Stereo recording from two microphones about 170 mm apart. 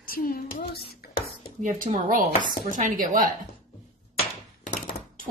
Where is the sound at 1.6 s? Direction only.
45° right (ahead or behind).